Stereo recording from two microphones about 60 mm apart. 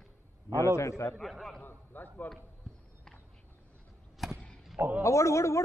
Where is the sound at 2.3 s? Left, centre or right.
Left.